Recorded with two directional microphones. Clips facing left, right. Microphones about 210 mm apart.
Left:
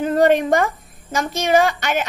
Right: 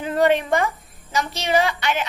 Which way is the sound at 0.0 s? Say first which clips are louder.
Left 4 dB; 45° left (ahead or behind).